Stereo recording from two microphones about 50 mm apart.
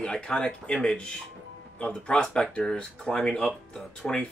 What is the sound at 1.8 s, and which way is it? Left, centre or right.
Speech, left.